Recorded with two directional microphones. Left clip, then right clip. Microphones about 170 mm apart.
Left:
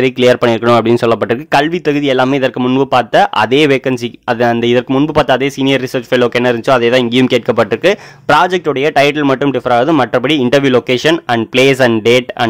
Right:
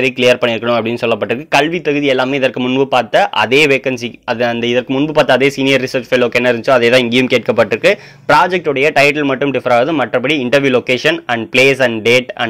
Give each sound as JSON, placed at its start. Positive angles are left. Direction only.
{"t": 0.0, "sound": "speech", "side_deg": 30}